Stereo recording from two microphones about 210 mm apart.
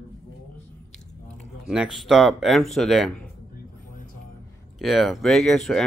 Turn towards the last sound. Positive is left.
turn(degrees=0)  # may be behind; listen again after turning